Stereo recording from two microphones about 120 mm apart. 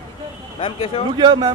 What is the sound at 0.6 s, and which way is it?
Speech, 50° left (ahead or behind).